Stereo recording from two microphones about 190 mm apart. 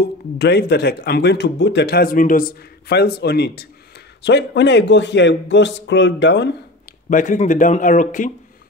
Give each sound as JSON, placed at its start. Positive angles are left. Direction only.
{"t": 0.0, "sound": "a man's voice", "side_deg": 60}
{"t": 7.1, "sound": "a man's voice", "side_deg": 40}